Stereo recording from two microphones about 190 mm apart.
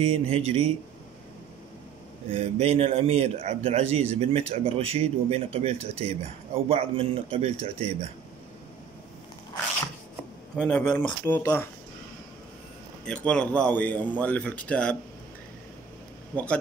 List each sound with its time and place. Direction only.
0.0 s a man's voice: 30° right (ahead or behind)
2.3 s a man's voice: 30° right (ahead or behind)
10.6 s speech: 10° left (ahead or behind)
13.0 s speech: 5° left (ahead or behind)
16.3 s speech: 5° left (ahead or behind)